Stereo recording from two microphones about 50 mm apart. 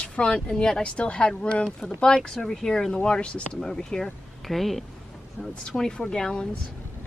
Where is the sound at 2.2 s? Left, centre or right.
Centre.